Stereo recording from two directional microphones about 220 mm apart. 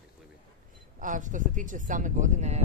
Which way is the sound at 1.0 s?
35° right (ahead or behind).